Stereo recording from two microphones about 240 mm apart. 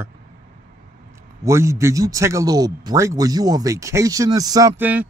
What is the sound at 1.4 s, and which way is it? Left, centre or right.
Speech, centre.